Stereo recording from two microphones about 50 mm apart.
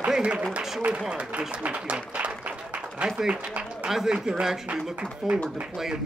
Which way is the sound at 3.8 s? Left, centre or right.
Centre.